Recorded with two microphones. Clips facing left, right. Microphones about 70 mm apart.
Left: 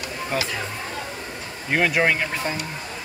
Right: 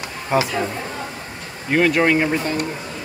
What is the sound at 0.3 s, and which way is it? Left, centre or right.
Speech, centre.